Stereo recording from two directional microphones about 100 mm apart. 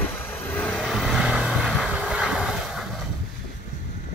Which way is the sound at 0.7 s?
Centre (ahead or behind).